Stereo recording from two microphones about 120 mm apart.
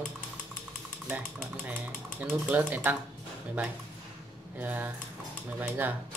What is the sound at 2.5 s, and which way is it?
Speech, 15° right (ahead or behind).